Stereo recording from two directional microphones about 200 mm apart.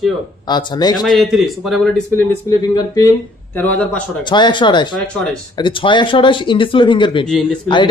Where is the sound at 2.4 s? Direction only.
15° left (ahead or behind).